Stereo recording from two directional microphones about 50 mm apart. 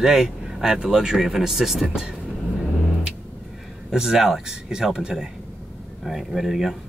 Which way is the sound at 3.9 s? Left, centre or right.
Centre.